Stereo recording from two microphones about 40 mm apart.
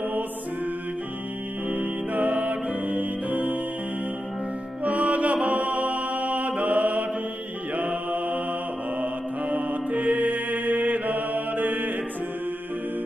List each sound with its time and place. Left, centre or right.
1.7 s music: right
4.8 s music: right
5.5 s mantra: right